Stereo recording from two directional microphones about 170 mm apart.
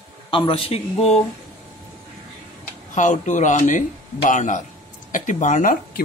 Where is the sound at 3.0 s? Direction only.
45° left (ahead or behind).